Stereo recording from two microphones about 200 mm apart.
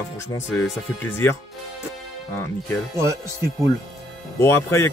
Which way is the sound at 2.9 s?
15° right (ahead or behind).